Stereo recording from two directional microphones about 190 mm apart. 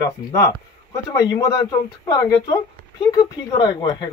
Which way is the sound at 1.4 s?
15° left (ahead or behind).